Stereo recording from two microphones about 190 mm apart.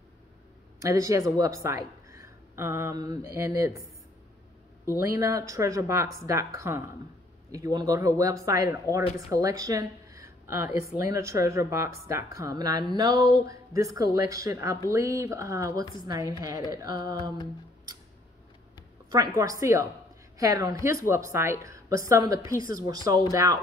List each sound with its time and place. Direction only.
0.7 s a woman's voice: 15° right (ahead or behind)
5.0 s speech: 15° right (ahead or behind)
16.8 s a sound: 20° right (ahead or behind)
19.0 s a woman's voice: 20° right (ahead or behind)
22.8 s a sound: 20° right (ahead or behind)
23.3 s speech: 15° right (ahead or behind)